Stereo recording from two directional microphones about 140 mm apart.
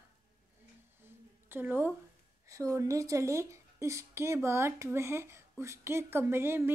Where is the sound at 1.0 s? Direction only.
15° right (ahead or behind).